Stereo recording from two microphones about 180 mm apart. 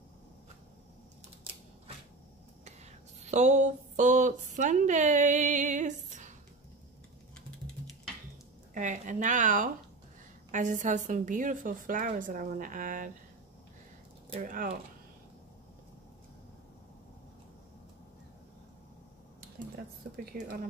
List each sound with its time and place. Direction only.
2.6 s speech: 40° right (ahead or behind)
8.7 s a woman's voice: 45° right (ahead or behind)
14.4 s a woman's voice: 50° right (ahead or behind)
20.3 s a woman's voice: 55° right (ahead or behind)